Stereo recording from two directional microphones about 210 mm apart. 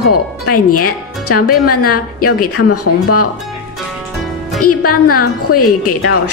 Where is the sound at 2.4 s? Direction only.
90° left.